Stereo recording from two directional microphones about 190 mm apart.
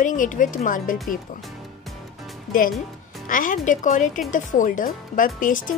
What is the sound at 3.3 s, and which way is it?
Speech, 45° left (ahead or behind).